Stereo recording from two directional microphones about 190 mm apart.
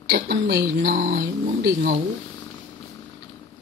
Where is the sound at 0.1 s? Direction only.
60° right (ahead or behind).